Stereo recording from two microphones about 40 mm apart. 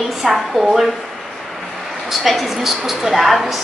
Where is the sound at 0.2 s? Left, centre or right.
Centre.